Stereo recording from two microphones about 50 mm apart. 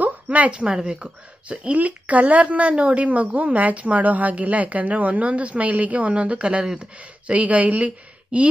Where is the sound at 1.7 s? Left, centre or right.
Right.